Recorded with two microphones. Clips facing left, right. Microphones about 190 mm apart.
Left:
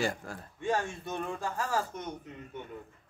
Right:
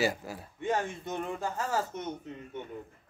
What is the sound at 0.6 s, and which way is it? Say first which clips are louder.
Speech: even; 20° right (ahead or behind).